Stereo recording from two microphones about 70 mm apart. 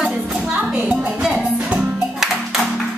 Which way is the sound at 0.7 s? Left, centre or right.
Centre.